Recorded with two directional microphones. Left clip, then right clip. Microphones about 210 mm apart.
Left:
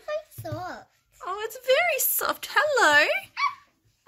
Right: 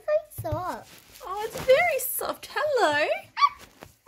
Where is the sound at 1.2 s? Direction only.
5° left (ahead or behind).